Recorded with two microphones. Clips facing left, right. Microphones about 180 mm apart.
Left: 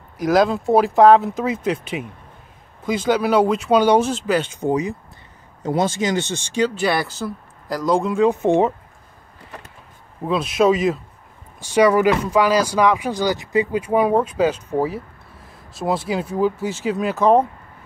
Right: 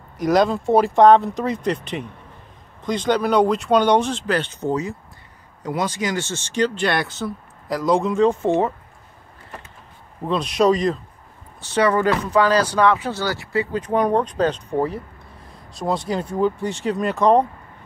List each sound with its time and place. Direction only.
0.2 s speech: centre (ahead or behind)
5.6 s speech: 25° left (ahead or behind); by 8.3 s centre (ahead or behind)
8.3 s speech: 20° left (ahead or behind)
10.2 s speech: 5° left (ahead or behind)